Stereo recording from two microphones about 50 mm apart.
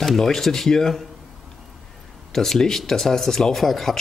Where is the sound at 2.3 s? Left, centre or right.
Centre.